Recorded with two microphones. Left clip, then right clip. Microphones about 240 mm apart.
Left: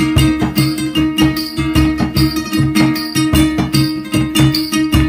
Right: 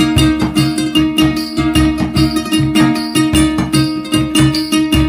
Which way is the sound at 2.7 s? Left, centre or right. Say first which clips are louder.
Right 2 dB; centre.